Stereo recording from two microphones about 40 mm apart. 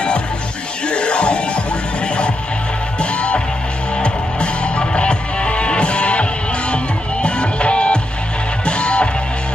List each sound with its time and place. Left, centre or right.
0.8 s music: left